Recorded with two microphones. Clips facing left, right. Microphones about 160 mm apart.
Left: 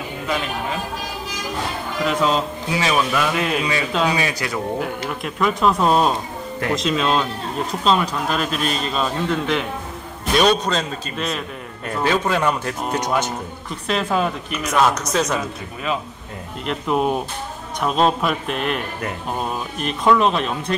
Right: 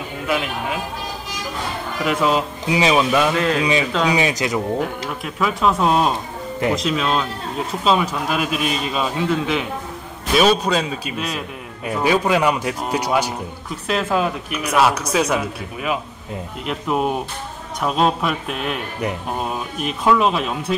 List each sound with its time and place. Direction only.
2.0 s a man's voice: 5° right (ahead or behind)
2.7 s a man's voice: 15° right (ahead or behind)
3.3 s speech: 10° left (ahead or behind)
4.1 s speech: 20° right (ahead or behind)
4.7 s a man's voice: centre (ahead or behind)
19.8 s speech: 5° right (ahead or behind)